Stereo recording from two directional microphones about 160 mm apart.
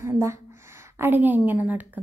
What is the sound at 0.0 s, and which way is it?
A woman's voice, 15° right (ahead or behind).